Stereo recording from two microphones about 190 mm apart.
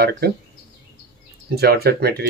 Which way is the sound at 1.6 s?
55° right (ahead or behind).